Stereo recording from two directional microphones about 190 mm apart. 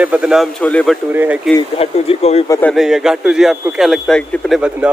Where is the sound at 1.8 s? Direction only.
30° left (ahead or behind).